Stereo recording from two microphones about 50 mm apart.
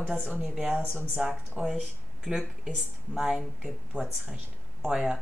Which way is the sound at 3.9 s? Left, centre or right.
Right.